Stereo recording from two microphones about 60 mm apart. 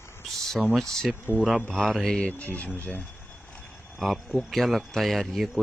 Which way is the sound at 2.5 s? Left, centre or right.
Left.